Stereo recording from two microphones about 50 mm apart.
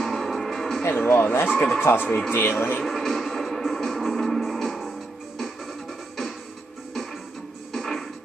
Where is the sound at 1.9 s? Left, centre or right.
Left.